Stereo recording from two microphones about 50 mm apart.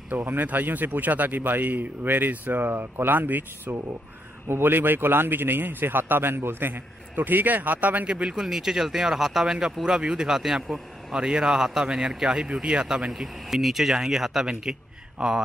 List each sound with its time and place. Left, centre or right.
0.2 s a man's voice: right
4.5 s a man's voice: right
8.1 s a man's voice: centre